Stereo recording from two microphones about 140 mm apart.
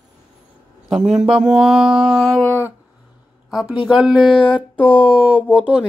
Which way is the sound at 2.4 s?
15° left (ahead or behind).